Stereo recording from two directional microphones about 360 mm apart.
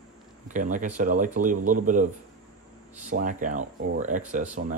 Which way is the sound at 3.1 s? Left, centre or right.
Right.